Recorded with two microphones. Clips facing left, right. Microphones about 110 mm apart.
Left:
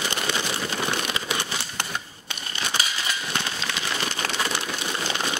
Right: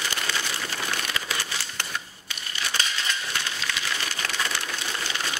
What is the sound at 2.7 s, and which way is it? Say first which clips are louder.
Crushing: even; 10° left (ahead or behind).